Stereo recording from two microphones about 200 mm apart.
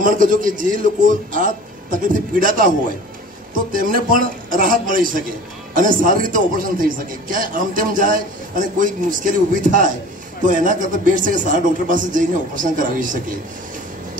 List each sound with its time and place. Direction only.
0.0 s a man's voice: 40° right (ahead or behind)
3.5 s a man's voice: 45° right (ahead or behind)